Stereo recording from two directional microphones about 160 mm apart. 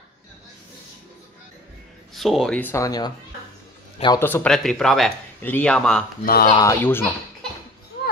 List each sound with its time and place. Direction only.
2.1 s speech: centre (ahead or behind)
2.6 s speech: 20° left (ahead or behind)
4.2 s speech: 10° left (ahead or behind)
6.2 s speech: 65° left (ahead or behind)
6.5 s speech: 20° left (ahead or behind)